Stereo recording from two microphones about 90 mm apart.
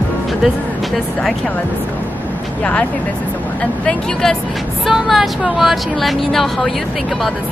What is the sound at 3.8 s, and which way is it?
Speech, 5° left (ahead or behind).